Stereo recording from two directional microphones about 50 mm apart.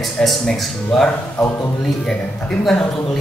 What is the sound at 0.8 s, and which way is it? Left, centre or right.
Speech, centre.